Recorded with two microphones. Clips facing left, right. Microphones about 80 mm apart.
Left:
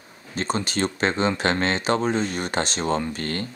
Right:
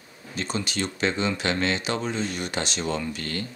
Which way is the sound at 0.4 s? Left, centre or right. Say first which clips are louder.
Left 4 dB; left.